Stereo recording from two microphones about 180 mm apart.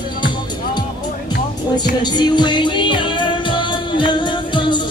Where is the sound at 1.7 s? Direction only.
25° left (ahead or behind).